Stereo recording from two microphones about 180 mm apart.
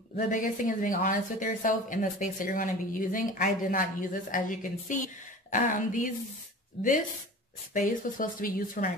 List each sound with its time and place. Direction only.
0.1 s a woman's voice: 45° left (ahead or behind)
7.7 s a woman's voice: 50° left (ahead or behind)